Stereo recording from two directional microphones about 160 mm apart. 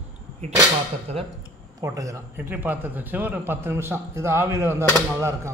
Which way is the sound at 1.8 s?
20° right (ahead or behind).